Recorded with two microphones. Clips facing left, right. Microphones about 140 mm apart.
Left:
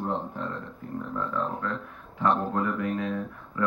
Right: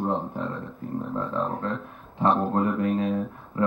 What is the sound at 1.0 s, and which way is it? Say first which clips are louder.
Speech: right 2 dB; 30° right (ahead or behind).